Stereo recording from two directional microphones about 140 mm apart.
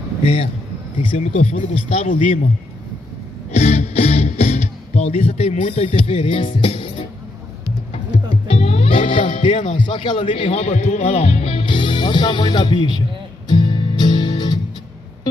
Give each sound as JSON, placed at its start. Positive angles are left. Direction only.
{"t": 0.2, "sound": "a man's voice", "side_deg": 45}
{"t": 0.9, "sound": "speech", "side_deg": 55}
{"t": 2.0, "sound": "a man's voice", "side_deg": 65}
{"t": 3.5, "sound": "music", "side_deg": 50}
{"t": 8.5, "sound": "music", "side_deg": 45}
{"t": 9.8, "sound": "speech", "side_deg": 35}
{"t": 13.5, "sound": "music", "side_deg": 35}